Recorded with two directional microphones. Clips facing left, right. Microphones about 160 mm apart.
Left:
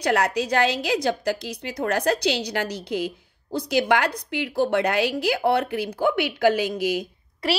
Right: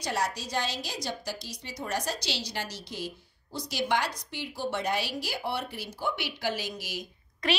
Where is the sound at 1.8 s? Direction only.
75° left (ahead or behind).